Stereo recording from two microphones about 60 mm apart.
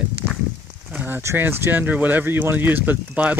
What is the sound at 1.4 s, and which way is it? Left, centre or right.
Speech, right.